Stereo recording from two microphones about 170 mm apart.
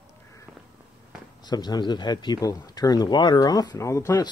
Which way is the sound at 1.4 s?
25° left (ahead or behind).